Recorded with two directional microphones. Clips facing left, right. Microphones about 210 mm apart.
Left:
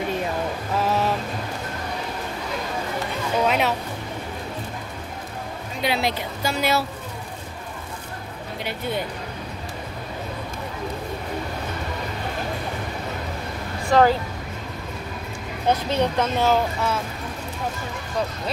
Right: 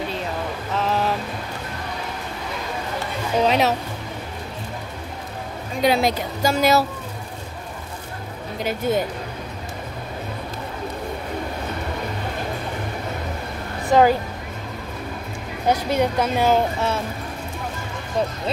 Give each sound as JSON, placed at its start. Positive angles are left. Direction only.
{"t": 0.7, "sound": "music", "side_deg": 5}
{"t": 3.4, "sound": "music", "side_deg": -35}
{"t": 5.8, "sound": "speech", "side_deg": -45}
{"t": 8.6, "sound": "speech", "side_deg": -45}
{"t": 13.8, "sound": "speech", "side_deg": -15}
{"t": 15.7, "sound": "a woman's voice", "side_deg": -10}